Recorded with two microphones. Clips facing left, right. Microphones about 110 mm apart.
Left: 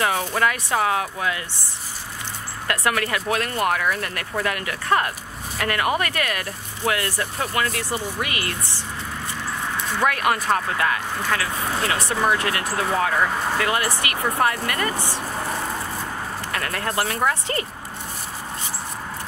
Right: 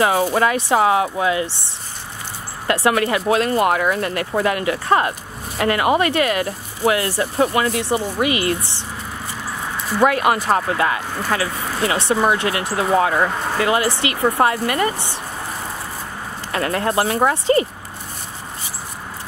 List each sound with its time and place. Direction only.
0.0 s speech: 25° right (ahead or behind)
2.6 s speech: 25° right (ahead or behind)
9.9 s speech: 20° right (ahead or behind)
16.5 s speech: 25° right (ahead or behind)